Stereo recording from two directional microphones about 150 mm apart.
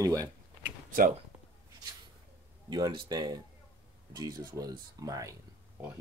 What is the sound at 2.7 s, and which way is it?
Speech, 25° right (ahead or behind).